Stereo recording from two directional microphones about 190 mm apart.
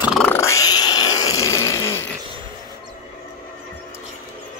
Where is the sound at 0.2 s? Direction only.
10° left (ahead or behind).